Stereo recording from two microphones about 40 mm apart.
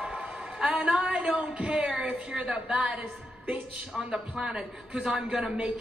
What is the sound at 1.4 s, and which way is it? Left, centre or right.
A man's voice, right.